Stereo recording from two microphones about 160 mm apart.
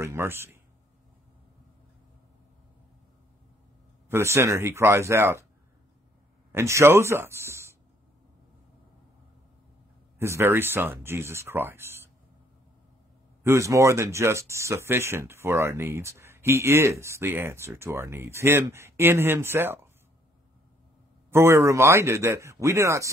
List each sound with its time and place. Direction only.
0.0 s speech: 15° right (ahead or behind)
4.1 s speech: 15° right (ahead or behind)
6.5 s speech: 20° right (ahead or behind)
10.1 s speech: 15° right (ahead or behind)
13.4 s speech: 20° right (ahead or behind)
21.3 s speech: 15° right (ahead or behind)